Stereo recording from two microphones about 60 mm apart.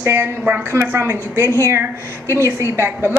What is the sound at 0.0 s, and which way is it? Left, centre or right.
A woman's voice, right.